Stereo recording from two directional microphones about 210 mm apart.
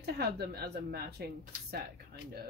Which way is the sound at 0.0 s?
50° right (ahead or behind).